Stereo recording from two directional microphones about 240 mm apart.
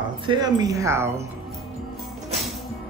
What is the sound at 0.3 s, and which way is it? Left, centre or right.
Speech, centre.